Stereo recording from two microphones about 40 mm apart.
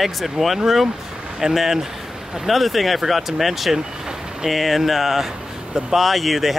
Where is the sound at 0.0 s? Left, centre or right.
Centre.